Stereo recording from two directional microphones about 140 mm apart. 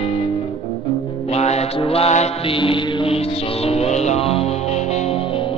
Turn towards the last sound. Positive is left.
turn(degrees=45)  # may be behind; listen again after turning